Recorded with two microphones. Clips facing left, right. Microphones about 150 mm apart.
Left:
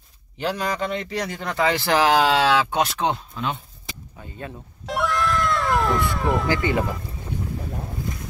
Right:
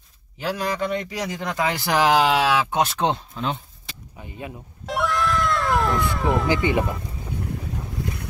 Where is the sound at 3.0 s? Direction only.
25° right (ahead or behind).